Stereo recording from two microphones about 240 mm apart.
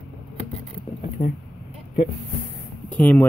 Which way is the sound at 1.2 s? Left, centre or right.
Left.